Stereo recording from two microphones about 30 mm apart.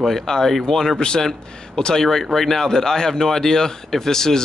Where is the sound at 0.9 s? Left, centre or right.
Left.